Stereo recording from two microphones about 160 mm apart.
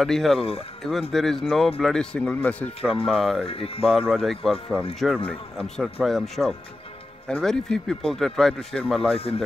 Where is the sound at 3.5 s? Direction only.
35° left (ahead or behind).